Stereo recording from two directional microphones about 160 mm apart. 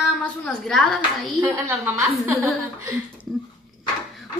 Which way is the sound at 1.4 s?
15° right (ahead or behind).